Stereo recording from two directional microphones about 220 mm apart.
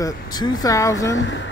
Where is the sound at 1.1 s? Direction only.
55° left (ahead or behind).